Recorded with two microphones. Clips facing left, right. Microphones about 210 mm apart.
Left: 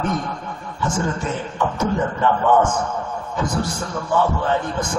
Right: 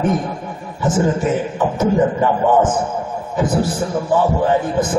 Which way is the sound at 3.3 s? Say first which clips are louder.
Right 6 dB; 5° right (ahead or behind).